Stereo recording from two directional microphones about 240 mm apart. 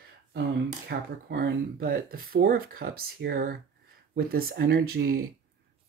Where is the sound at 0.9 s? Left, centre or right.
Right.